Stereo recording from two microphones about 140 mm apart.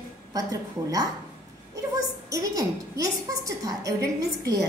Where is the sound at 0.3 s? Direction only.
25° right (ahead or behind).